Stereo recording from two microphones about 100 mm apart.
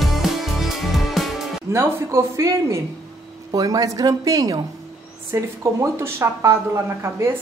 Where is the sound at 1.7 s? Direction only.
30° right (ahead or behind).